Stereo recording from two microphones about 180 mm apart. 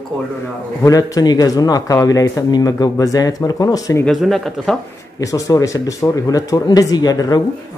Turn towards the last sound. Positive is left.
turn(degrees=20)  # may be behind; listen again after turning